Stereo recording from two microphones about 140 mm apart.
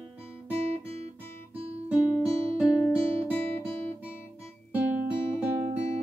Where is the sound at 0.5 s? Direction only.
45° right (ahead or behind).